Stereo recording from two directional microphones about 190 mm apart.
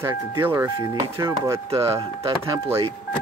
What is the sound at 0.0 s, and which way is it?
Speech, 15° right (ahead or behind).